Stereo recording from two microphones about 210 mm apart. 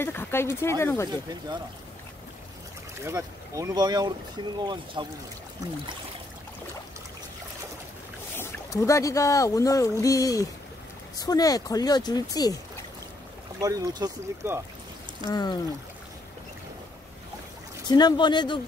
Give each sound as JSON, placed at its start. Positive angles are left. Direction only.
{"t": 0.0, "sound": "speech", "side_deg": 10}
{"t": 3.0, "sound": "speech", "side_deg": -15}
{"t": 8.4, "sound": "speech", "side_deg": 15}
{"t": 13.6, "sound": "speech", "side_deg": -15}
{"t": 15.2, "sound": "speech", "side_deg": 20}
{"t": 17.8, "sound": "speech", "side_deg": 20}